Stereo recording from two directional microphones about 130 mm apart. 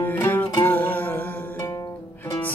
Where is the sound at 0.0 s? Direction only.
15° left (ahead or behind).